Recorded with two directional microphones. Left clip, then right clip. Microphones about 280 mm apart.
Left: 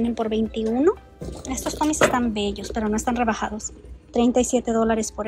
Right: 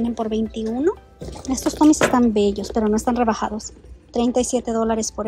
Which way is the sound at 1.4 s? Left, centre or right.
Centre.